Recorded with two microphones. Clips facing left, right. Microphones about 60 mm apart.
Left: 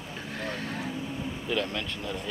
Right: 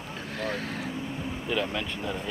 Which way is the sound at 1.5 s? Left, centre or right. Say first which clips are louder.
Right 1 dB; centre.